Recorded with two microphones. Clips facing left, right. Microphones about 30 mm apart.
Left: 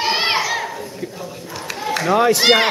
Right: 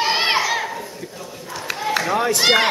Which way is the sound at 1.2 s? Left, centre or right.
Centre.